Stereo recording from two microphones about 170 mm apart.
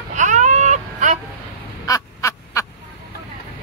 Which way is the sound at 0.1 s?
45° right (ahead or behind).